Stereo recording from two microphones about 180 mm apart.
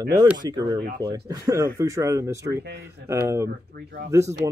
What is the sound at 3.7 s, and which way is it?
Speech, 60° right (ahead or behind).